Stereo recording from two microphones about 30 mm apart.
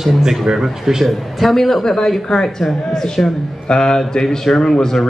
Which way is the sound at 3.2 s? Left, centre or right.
Left.